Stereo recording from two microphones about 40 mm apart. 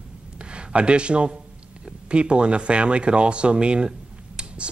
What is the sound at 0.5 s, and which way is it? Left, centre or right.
Speech, right.